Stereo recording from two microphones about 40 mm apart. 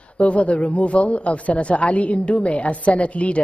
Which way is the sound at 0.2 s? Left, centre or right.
Left.